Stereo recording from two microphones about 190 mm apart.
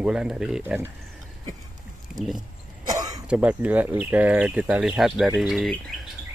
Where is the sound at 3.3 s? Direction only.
5° right (ahead or behind).